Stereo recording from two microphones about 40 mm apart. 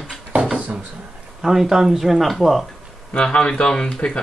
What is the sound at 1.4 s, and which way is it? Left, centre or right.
Speech, centre.